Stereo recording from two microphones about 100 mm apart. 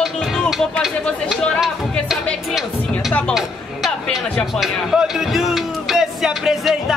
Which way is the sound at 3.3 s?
5° left (ahead or behind).